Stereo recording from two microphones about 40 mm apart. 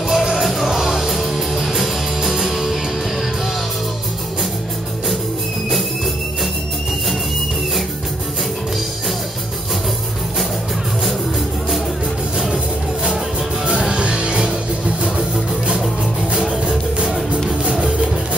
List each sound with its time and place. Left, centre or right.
0.1 s music: centre
0.4 s music: centre
13.7 s music: right
16.3 s music: centre